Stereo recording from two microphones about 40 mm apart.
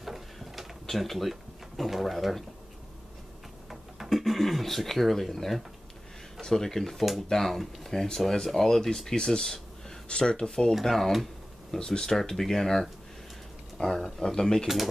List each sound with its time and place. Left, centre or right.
0.0 s drawer open or close: centre
4.0 s speech: centre
9.2 s a sound: centre
10.0 s speech: left
10.7 s speech: centre
11.8 s speech: centre
13.8 s speech: centre